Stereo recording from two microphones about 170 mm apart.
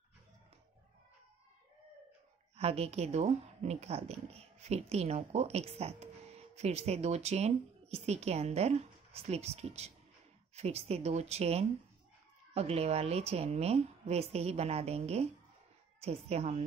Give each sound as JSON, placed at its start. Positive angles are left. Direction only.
{"t": 2.5, "sound": "speech", "side_deg": -35}